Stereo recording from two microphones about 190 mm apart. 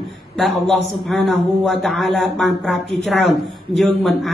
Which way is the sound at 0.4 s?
Centre (ahead or behind).